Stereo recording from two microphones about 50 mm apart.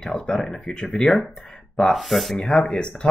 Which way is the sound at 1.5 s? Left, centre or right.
Centre.